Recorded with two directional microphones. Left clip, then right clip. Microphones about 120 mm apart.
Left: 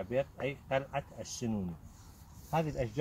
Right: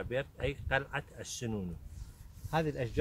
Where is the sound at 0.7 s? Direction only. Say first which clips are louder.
Even; 35° right (ahead or behind).